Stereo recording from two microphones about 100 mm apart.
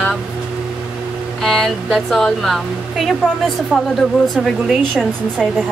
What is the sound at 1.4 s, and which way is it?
Speech, centre (ahead or behind).